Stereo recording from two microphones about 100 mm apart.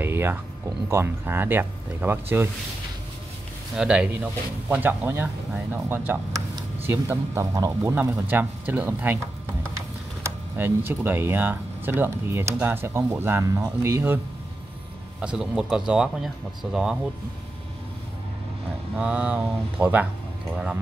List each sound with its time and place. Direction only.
0.0 s a sound: 20° right (ahead or behind)
0.8 s speech: 25° right (ahead or behind)
3.7 s speech: 10° right (ahead or behind)
10.2 s speech: 20° right (ahead or behind)
15.1 s speech: 5° right (ahead or behind)
18.9 s speech: 10° right (ahead or behind)